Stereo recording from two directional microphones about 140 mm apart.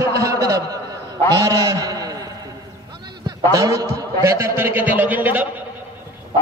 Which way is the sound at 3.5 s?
25° right (ahead or behind).